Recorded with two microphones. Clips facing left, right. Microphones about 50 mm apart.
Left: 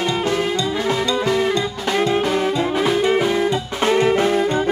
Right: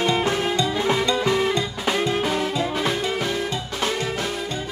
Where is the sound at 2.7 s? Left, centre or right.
Centre.